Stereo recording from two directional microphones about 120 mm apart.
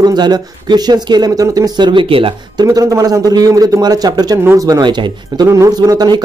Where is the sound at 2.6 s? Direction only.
25° right (ahead or behind).